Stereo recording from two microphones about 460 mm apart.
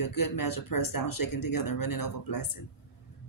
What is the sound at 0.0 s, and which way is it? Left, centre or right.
Speech, left.